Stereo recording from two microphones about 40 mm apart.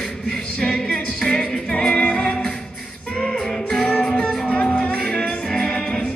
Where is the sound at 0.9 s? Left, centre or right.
Left.